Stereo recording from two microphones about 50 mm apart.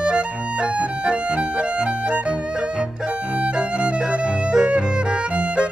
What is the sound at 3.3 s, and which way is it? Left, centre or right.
Music, right.